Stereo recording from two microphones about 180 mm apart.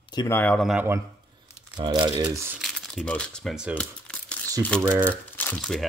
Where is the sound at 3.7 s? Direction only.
5° left (ahead or behind).